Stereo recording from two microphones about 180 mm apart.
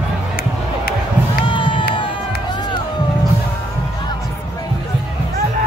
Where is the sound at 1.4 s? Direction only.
25° left (ahead or behind).